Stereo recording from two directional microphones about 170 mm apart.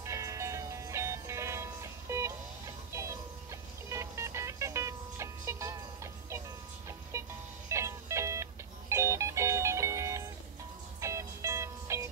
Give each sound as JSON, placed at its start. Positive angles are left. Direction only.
{"t": 0.0, "sound": "music", "side_deg": -20}
{"t": 7.7, "sound": "music", "side_deg": -15}